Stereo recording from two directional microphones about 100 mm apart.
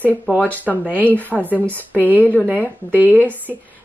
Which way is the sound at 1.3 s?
Centre (ahead or behind).